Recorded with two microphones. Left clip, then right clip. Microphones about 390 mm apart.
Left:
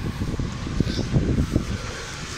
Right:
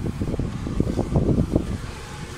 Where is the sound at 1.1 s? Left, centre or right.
Right.